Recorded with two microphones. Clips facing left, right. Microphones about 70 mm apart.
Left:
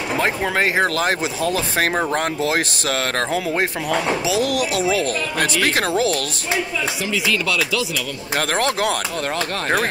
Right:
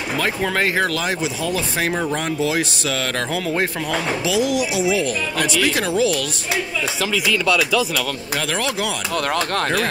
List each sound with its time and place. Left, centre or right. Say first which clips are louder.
0.6 s speech: left 2 dB; left
0.8 s speech: left 2 dB; left
3.3 s speech: left 1 dB; centre
4.3 s speech: right 3 dB; left
8.4 s speech: left 4 dB; left
9.1 s speech: right 3 dB; right